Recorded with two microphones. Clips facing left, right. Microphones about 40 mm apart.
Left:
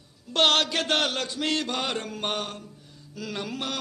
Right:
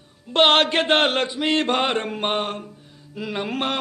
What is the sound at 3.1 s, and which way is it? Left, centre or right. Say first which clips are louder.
Music: right 6 dB; right.